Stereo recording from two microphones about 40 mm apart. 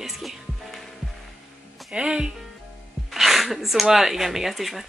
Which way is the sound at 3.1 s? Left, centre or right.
Centre.